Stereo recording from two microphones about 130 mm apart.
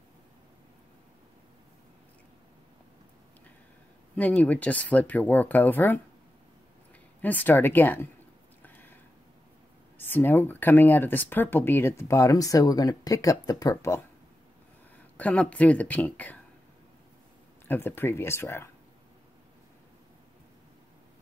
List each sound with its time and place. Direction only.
4.1 s speech: 10° left (ahead or behind)
7.2 s speech: 15° left (ahead or behind)
8.6 s a sound: 15° left (ahead or behind)
9.9 s speech: 15° left (ahead or behind)
15.1 s speech: 10° left (ahead or behind)
17.6 s speech: 15° left (ahead or behind)